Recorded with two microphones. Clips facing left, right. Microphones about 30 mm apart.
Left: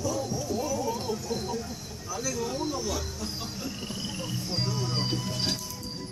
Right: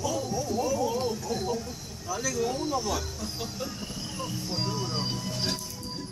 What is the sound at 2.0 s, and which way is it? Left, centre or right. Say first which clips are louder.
Speech: right 3 dB; centre.